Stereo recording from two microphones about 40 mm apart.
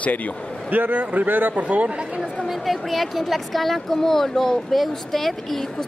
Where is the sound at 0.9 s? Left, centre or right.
Right.